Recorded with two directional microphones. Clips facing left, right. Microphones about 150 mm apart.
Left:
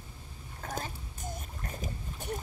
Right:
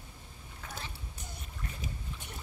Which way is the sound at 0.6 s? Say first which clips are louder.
Left 7 dB; 45° left (ahead or behind).